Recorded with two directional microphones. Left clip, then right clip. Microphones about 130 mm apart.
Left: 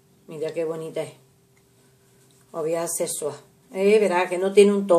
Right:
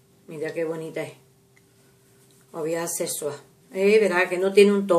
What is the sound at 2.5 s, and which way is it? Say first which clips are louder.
A woman's voice: left 2 dB; 5° left (ahead or behind).